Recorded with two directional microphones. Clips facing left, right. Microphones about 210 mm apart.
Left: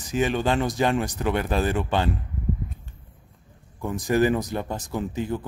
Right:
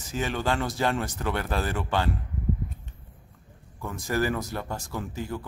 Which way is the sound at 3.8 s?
20° left (ahead or behind).